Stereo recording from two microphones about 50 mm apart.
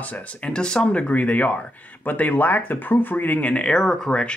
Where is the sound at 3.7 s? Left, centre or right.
Centre.